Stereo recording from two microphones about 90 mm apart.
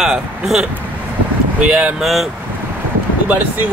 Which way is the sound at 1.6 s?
10° right (ahead or behind).